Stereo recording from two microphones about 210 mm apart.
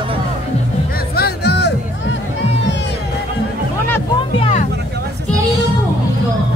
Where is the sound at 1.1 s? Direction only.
50° left (ahead or behind).